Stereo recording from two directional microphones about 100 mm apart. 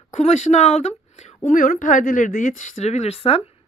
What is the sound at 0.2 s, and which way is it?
Speech, 90° left.